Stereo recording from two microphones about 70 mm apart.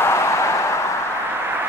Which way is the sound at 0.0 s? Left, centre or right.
Left.